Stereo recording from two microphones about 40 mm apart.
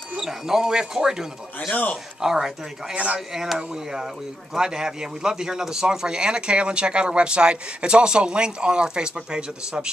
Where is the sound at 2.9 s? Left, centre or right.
Right.